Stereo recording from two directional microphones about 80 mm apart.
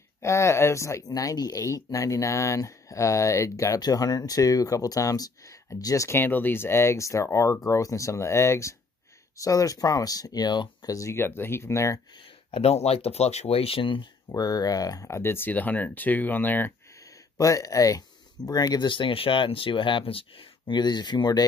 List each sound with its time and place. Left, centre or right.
0.2 s speech: left
6.0 s speech: left
11.1 s speech: left
13.7 s speech: left
14.3 s speech: left
15.0 s speech: left
17.4 s speech: left